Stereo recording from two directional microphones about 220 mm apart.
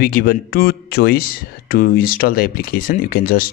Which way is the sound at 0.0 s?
40° left (ahead or behind).